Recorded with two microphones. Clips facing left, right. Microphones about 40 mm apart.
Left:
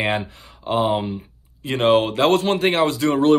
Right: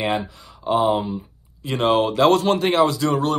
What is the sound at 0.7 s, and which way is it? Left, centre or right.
Speech, centre.